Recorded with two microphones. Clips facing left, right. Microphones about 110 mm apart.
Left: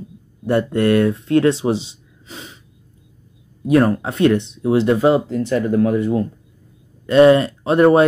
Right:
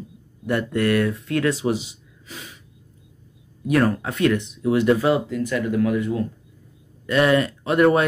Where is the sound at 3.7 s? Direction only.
30° left (ahead or behind).